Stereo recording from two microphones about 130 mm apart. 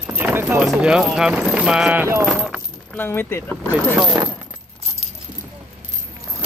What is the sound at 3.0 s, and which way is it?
Speech, 15° left (ahead or behind).